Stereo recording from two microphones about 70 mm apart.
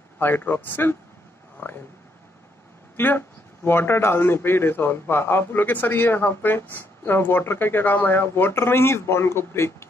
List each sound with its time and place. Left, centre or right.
0.2 s a man's voice: left
1.6 s a sound: left
3.0 s a man's voice: left